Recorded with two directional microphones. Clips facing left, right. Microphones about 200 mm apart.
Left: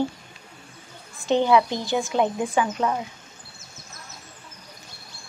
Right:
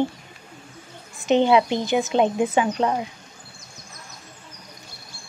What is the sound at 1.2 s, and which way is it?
Speech, 20° right (ahead or behind).